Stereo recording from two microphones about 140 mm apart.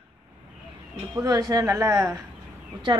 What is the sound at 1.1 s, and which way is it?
A woman's voice, 30° right (ahead or behind).